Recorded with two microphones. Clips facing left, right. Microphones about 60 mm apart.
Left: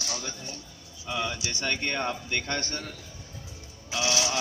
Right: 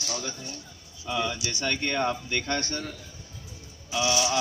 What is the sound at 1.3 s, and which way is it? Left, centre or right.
Speech, left.